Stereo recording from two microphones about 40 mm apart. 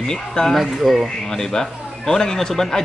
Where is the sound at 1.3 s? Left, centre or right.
Centre.